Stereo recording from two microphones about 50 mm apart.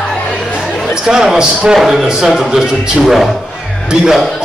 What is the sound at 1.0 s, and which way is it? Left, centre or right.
Speech, centre.